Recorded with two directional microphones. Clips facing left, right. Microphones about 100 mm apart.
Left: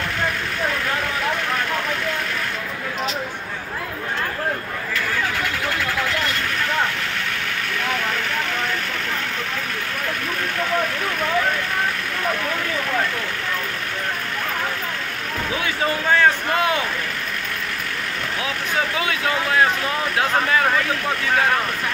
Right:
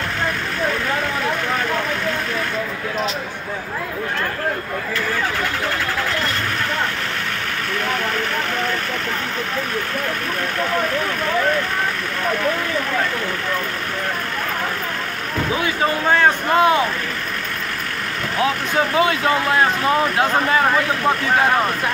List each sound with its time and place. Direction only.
16.1 s speech: 25° right (ahead or behind)
18.9 s speech: 35° right (ahead or behind)